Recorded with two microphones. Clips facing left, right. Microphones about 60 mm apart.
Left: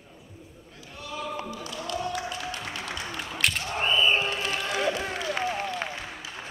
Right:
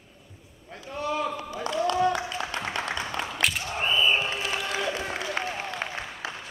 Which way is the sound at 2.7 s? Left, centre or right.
Right.